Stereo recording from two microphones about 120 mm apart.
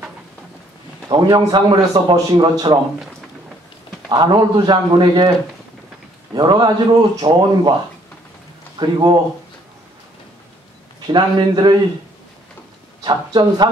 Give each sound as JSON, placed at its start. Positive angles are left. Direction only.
{"t": 1.0, "sound": "a man's voice", "side_deg": -40}
{"t": 4.1, "sound": "a man's voice", "side_deg": -35}
{"t": 6.3, "sound": "a man's voice", "side_deg": -40}
{"t": 8.7, "sound": "a man's voice", "side_deg": -35}
{"t": 11.1, "sound": "a man's voice", "side_deg": -40}
{"t": 13.0, "sound": "a man's voice", "side_deg": -40}